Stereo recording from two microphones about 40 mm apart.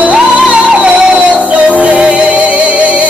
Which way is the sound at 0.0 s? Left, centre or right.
Right.